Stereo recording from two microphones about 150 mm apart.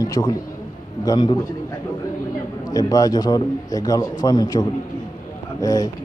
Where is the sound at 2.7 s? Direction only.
25° left (ahead or behind).